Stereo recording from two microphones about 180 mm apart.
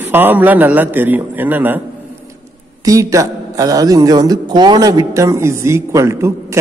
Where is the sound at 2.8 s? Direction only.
20° right (ahead or behind).